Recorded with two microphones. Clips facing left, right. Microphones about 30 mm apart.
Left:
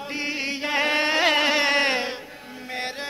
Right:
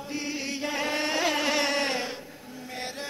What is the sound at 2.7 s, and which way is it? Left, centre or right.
Music, left.